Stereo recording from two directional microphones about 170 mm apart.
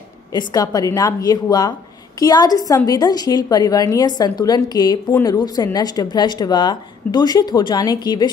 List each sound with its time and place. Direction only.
0.3 s speech: 25° left (ahead or behind)